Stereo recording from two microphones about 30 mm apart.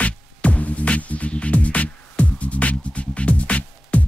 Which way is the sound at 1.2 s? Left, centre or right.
Left.